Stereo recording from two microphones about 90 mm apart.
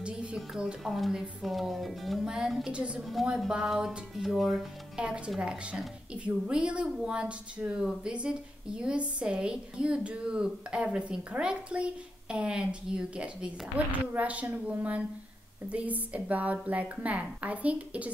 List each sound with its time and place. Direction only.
0.0 s a woman's voice: 10° right (ahead or behind)